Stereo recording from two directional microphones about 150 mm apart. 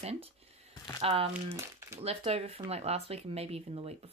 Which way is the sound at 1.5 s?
20° right (ahead or behind).